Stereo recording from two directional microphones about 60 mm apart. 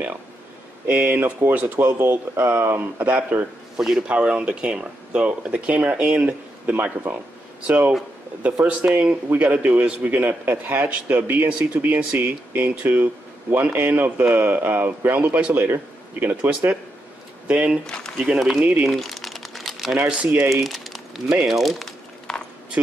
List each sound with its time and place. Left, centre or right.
0.8 s speech: right
3.7 s speech: centre
4.1 s speech: centre; by 10.8 s right
10.8 s speech: right
12.1 s speech: right
17.5 s speech: centre
17.8 s speech: centre
18.2 s speech: centre
18.9 s crumpling: centre
20.1 s speech: centre
20.6 s crumpling: centre
21.4 s speech: centre
22.3 s music: centre